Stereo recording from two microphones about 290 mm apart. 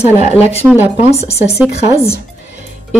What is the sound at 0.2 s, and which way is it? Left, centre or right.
Speech, left.